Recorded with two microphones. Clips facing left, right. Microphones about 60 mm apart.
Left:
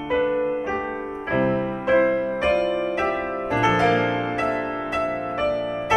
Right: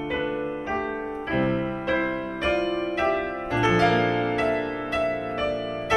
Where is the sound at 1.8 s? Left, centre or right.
Centre.